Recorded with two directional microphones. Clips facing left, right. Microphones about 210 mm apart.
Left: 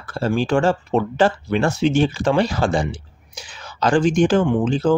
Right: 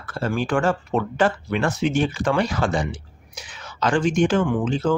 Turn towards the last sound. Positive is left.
turn(degrees=30)  # may be behind; listen again after turning